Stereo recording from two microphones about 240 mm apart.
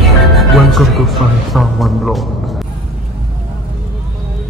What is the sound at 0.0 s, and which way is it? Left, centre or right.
Speech, centre.